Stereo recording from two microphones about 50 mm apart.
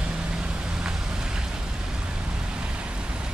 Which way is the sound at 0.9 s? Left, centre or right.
Centre.